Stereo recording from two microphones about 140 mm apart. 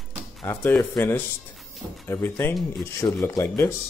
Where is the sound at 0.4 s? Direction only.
15° left (ahead or behind).